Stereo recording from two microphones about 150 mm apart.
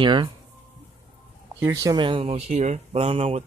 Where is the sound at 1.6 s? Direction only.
25° right (ahead or behind); by 3.4 s 45° right (ahead or behind).